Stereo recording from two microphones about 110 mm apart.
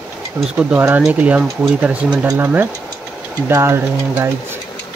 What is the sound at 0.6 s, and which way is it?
Speech, 15° right (ahead or behind).